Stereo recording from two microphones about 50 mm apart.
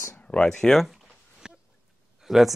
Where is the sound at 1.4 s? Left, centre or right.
Centre.